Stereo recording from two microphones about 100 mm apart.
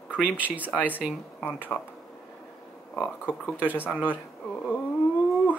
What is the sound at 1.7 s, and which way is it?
Speech, 5° left (ahead or behind).